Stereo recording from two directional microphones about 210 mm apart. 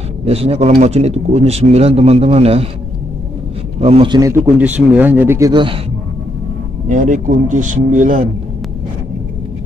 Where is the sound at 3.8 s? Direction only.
25° right (ahead or behind).